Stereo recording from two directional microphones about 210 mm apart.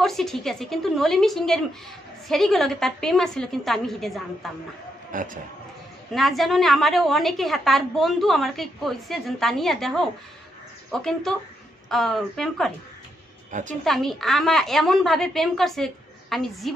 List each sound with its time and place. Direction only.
0.0 s a woman's voice: centre (ahead or behind)
5.1 s speech: 40° right (ahead or behind)
6.1 s a woman's voice: centre (ahead or behind)
13.5 s a woman's voice: 35° right (ahead or behind)
13.8 s a woman's voice: centre (ahead or behind)